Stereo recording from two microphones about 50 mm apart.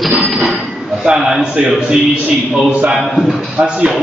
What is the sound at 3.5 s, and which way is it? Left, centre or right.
Speech, centre.